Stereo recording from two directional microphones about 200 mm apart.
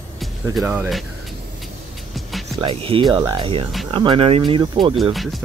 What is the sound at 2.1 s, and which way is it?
Music, centre (ahead or behind).